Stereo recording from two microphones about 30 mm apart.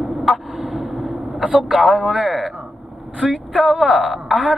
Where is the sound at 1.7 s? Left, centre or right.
Centre.